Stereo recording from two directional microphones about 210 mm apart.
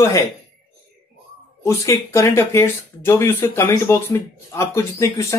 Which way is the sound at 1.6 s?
15° left (ahead or behind).